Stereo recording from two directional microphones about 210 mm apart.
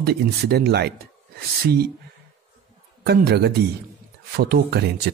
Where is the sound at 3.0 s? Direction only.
50° right (ahead or behind).